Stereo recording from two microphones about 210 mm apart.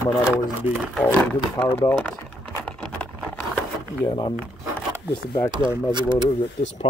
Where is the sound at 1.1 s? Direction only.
5° left (ahead or behind).